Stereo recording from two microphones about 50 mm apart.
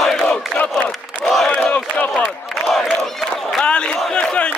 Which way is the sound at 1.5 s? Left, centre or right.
Left.